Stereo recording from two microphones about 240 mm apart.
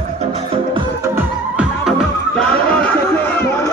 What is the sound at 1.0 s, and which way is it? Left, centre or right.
Music, centre.